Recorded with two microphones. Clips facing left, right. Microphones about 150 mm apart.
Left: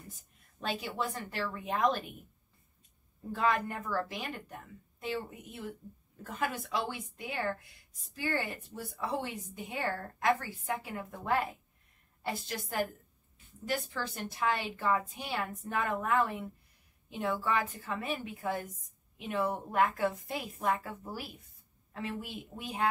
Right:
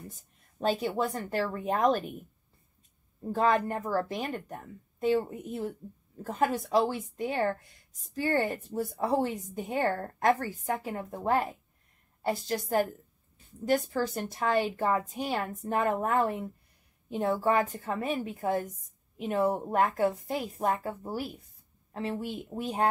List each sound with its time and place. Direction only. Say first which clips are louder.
0.6 s speech: right 7 dB; 40° right (ahead or behind)
3.3 s speech: right 5 dB; 40° right (ahead or behind)